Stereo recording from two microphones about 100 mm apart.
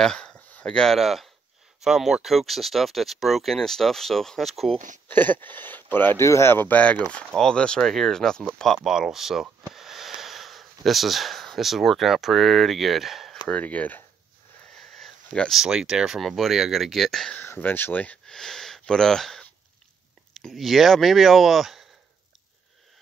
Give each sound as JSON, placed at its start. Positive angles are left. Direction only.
{"t": 0.0, "sound": "speech", "side_deg": 5}
{"t": 5.0, "sound": "speech", "side_deg": 20}
{"t": 13.5, "sound": "speech", "side_deg": 15}
{"t": 14.8, "sound": "speech", "side_deg": 5}
{"t": 17.4, "sound": "speech", "side_deg": 20}